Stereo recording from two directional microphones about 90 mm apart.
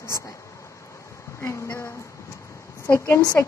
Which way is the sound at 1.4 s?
30° left (ahead or behind).